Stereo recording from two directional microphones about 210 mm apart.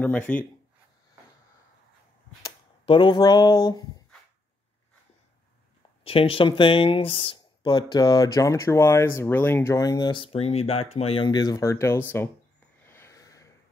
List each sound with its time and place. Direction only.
0.0 s speech: 5° left (ahead or behind)
2.8 s speech: 25° left (ahead or behind)
6.0 s speech: 25° left (ahead or behind)
12.8 s a sound: 10° left (ahead or behind)